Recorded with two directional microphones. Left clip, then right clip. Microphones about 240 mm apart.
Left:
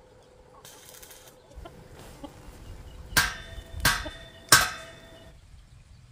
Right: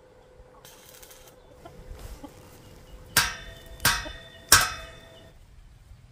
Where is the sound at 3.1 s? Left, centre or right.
Right.